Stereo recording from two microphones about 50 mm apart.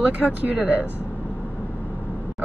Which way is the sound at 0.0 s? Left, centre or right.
Right.